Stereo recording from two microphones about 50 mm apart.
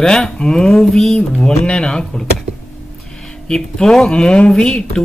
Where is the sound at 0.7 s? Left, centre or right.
Centre.